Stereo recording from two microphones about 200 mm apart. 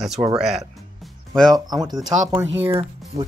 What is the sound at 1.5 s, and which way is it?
Speech, 20° right (ahead or behind).